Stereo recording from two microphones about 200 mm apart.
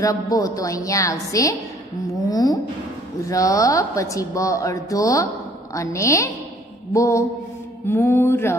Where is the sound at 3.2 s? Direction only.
15° left (ahead or behind).